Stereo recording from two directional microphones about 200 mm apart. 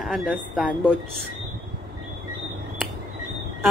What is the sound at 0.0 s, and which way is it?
Speech, centre (ahead or behind).